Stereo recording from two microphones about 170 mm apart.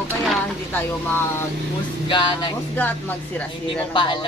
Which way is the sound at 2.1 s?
30° left (ahead or behind).